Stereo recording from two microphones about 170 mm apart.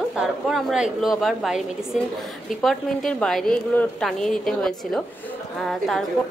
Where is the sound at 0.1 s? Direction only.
Centre (ahead or behind).